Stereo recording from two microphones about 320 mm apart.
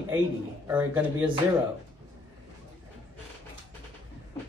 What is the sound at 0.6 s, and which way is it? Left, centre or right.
Speech, centre.